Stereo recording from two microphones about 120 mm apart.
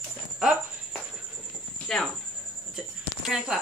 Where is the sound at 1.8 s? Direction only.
5° left (ahead or behind).